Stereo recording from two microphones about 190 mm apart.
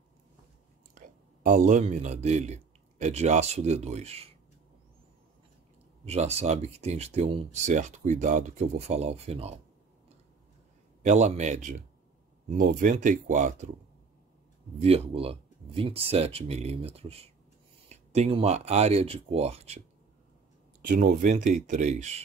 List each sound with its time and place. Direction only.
0.9 s a man's voice: 45° right (ahead or behind)
6.0 s speech: 35° right (ahead or behind)
11.0 s speech: 40° right (ahead or behind)
14.8 s speech: 30° right (ahead or behind)
20.9 s speech: 45° right (ahead or behind)